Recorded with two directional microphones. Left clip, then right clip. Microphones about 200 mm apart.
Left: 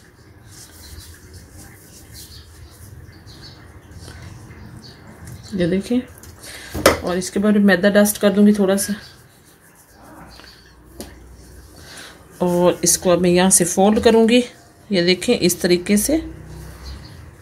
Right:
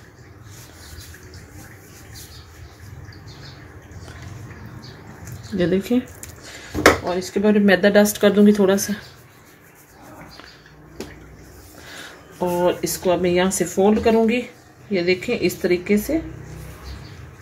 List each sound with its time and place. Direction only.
5.6 s speech: 15° left (ahead or behind)
7.1 s speech: 40° left (ahead or behind)
7.6 s speech: 20° left (ahead or behind)
12.6 s speech: 50° left (ahead or behind)